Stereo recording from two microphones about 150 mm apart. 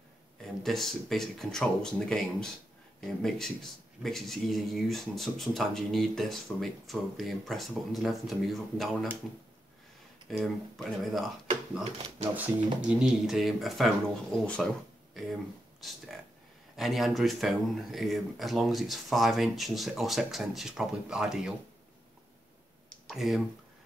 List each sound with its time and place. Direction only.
0.4 s speech: centre (ahead or behind)
10.3 s speech: centre (ahead or behind)
11.8 s speech: 40° right (ahead or behind)
12.8 s speech: 5° right (ahead or behind)
22.8 s clicking: centre (ahead or behind)